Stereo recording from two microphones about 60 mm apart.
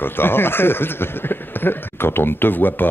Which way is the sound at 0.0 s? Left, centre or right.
Left.